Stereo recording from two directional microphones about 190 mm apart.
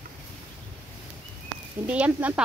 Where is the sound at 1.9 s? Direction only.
5° right (ahead or behind).